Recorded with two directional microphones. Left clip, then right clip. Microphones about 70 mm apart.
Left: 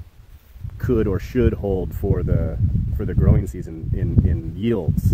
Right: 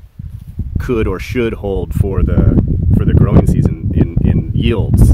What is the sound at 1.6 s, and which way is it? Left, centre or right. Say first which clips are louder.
Speech: right 4 dB; centre.